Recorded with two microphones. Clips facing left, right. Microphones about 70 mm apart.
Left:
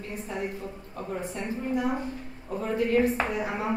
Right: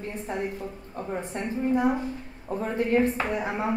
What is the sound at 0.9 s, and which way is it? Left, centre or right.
Speech, right.